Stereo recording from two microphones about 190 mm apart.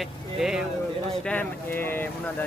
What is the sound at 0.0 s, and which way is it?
Speech, centre (ahead or behind).